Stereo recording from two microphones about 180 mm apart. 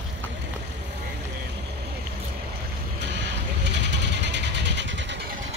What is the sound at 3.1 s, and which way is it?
Vehicle, 75° right (ahead or behind).